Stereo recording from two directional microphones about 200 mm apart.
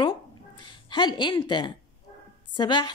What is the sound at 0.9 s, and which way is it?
A woman's voice, 20° left (ahead or behind).